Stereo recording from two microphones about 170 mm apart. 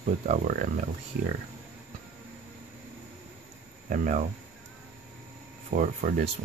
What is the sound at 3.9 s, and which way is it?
Speech, 45° right (ahead or behind).